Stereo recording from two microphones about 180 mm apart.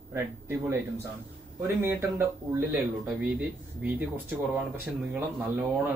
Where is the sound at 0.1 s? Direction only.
15° right (ahead or behind).